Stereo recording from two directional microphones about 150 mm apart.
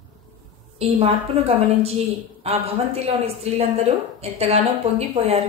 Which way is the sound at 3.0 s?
45° right (ahead or behind).